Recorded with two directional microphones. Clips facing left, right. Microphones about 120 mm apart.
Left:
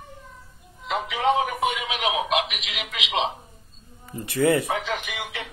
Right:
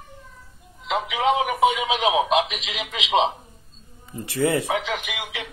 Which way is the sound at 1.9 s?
30° right (ahead or behind).